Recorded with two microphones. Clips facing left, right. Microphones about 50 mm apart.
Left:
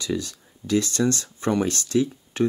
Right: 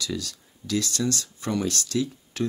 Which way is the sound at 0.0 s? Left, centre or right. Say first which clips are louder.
Left 4 dB; left.